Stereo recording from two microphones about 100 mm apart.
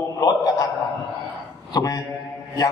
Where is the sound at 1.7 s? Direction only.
40° left (ahead or behind).